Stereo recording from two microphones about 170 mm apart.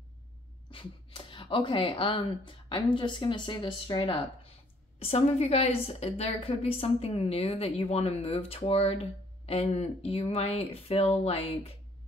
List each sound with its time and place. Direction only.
0.7 s a woman's voice: 30° left (ahead or behind)